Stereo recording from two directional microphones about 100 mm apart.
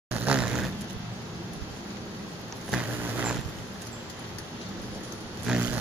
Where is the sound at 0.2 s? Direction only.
15° right (ahead or behind).